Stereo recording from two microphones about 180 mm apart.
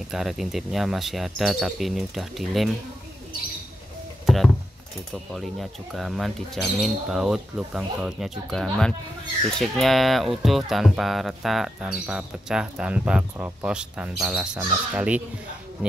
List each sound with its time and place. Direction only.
0.1 s speech: centre (ahead or behind)
5.1 s speech: centre (ahead or behind)